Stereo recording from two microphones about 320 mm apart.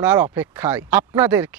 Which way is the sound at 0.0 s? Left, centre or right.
Centre.